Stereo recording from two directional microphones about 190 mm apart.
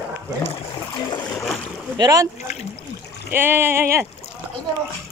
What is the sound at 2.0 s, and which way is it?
Speech, 20° right (ahead or behind).